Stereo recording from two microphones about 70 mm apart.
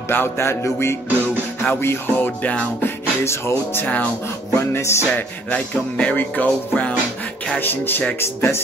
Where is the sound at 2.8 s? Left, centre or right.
Left.